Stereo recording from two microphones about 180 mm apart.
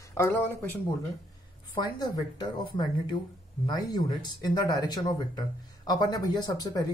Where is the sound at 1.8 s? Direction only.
25° left (ahead or behind).